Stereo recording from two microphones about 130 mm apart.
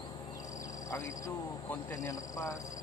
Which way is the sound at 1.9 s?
25° left (ahead or behind).